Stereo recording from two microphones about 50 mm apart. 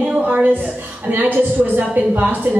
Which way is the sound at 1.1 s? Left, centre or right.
Right.